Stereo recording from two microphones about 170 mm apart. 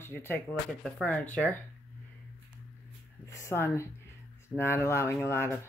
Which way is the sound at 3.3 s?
15° left (ahead or behind).